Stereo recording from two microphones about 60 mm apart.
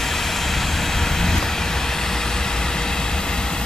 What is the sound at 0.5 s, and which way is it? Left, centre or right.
Vehicle, centre.